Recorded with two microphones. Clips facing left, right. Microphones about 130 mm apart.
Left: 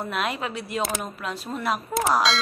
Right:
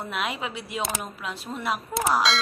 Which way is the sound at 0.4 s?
50° left (ahead or behind).